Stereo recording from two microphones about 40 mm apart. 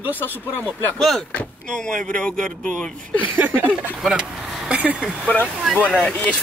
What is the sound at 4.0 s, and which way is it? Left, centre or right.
Speech, centre.